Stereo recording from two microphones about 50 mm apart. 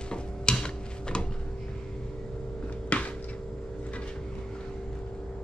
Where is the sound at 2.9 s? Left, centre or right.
Left.